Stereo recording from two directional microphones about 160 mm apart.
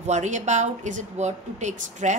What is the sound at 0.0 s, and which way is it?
A woman's voice, 50° right (ahead or behind).